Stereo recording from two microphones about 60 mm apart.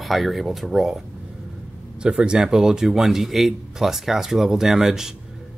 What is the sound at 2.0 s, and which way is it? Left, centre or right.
A man's voice, centre.